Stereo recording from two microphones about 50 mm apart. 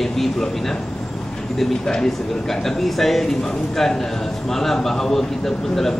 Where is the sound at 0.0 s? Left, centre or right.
Centre.